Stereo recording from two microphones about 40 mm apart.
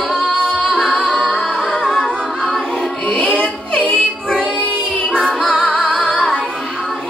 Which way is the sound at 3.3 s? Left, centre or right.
Left.